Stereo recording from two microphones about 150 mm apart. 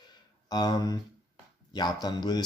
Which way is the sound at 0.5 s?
25° left (ahead or behind).